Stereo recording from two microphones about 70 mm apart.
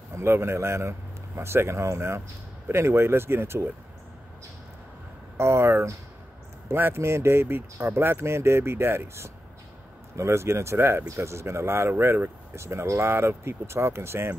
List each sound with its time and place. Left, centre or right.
0.1 s speech: right
5.4 s speech: right